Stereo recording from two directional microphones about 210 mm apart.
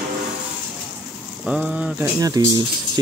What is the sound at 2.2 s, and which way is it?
Speech, 15° right (ahead or behind).